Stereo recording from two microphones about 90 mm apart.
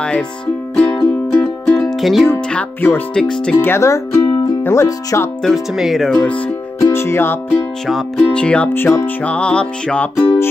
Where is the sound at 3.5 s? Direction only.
25° left (ahead or behind).